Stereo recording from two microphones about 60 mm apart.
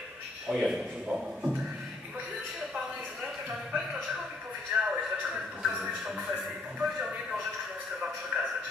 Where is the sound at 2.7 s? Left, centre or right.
Centre.